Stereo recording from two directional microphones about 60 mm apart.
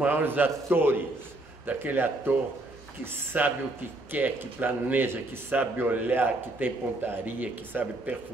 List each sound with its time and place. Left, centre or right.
0.0 s a man's voice: right
5.5 s a man's voice: right